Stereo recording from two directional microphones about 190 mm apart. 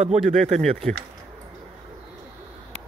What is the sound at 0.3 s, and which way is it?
Speech, 40° right (ahead or behind).